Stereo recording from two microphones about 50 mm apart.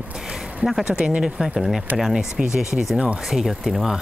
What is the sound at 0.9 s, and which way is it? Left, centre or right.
Speech, right.